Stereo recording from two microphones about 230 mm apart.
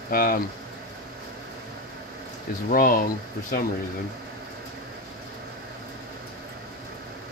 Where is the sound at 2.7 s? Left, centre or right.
Left.